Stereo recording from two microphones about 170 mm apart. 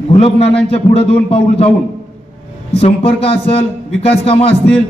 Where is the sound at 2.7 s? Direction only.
35° left (ahead or behind).